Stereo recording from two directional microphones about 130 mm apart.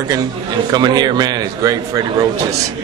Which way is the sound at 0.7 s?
35° right (ahead or behind).